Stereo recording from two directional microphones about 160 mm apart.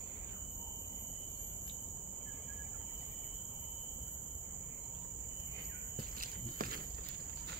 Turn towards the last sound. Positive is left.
turn(degrees=-65)  # may be behind; listen again after turning